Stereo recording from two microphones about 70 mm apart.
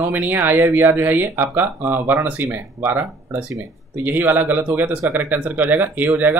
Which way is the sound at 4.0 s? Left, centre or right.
Right.